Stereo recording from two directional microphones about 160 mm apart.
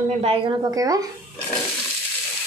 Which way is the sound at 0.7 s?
20° right (ahead or behind).